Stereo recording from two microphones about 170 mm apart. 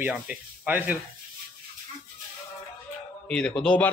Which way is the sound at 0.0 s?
10° right (ahead or behind).